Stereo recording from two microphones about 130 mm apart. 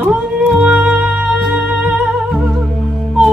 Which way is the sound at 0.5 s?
10° right (ahead or behind).